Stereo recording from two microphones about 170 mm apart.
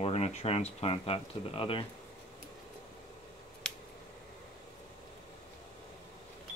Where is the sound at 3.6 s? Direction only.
5° left (ahead or behind).